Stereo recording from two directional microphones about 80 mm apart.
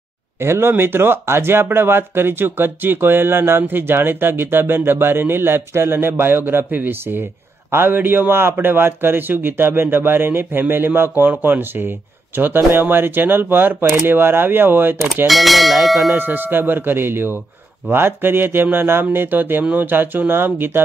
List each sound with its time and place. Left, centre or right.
0.4 s speech: right
15.2 s bell: centre
16.2 s speech: right